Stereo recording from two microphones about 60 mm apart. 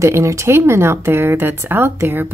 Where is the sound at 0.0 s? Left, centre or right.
Right.